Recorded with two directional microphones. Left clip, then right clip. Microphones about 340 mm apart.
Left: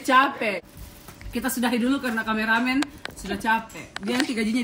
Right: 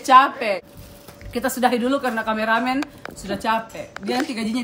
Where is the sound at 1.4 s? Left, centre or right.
Centre.